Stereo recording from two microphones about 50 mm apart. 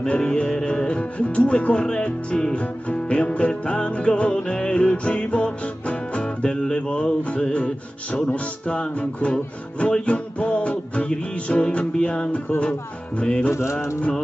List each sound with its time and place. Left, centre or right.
0.0 s music: centre
13.5 s mantra: left